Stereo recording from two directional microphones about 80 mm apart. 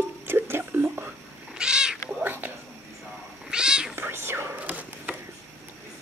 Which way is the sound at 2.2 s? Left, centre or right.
Right.